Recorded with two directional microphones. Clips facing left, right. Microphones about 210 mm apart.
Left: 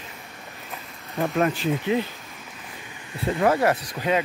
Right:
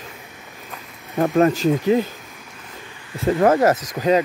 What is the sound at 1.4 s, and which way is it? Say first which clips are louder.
Speech: right 7 dB; 40° right (ahead or behind).